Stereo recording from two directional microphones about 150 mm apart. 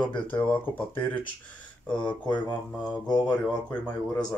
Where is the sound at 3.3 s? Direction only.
10° left (ahead or behind).